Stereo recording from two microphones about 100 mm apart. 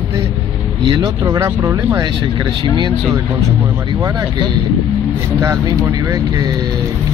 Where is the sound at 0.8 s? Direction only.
40° right (ahead or behind).